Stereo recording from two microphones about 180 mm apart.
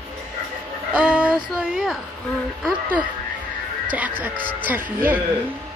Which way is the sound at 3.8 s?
10° right (ahead or behind).